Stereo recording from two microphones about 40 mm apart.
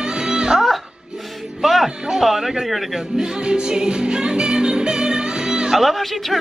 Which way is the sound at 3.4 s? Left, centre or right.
Right.